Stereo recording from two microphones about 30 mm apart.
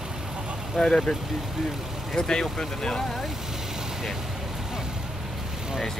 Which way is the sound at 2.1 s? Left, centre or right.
Left.